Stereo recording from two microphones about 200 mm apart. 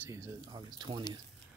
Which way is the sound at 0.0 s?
15° right (ahead or behind).